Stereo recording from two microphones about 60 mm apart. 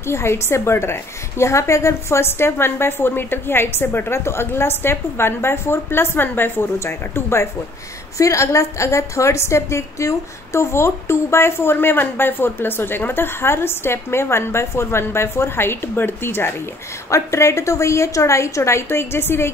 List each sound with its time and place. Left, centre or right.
0.0 s a woman's voice: left
6.8 s a woman's voice: left
8.2 s a woman's voice: left
17.1 s a woman's voice: left